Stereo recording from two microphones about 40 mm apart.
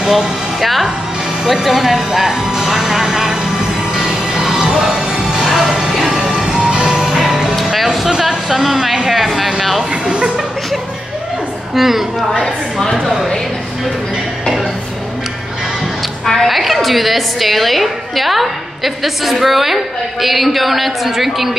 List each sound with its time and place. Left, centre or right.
0.0 s speech: centre
1.4 s music: centre; by 7.0 s right
7.0 s music: centre
7.7 s a sound: centre
8.2 s a woman's voice: centre
10.0 s a sound: right
11.7 s a woman's voice: centre
16.3 s a woman's voice: centre